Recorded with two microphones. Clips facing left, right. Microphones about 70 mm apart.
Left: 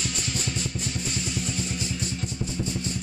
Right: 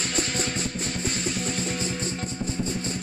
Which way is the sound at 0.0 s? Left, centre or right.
Right.